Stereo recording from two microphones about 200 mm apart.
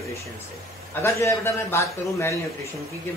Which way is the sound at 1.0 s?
15° left (ahead or behind).